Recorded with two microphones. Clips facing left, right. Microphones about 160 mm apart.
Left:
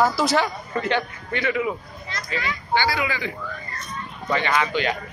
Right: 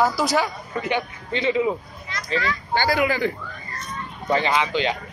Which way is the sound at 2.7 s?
45° right (ahead or behind).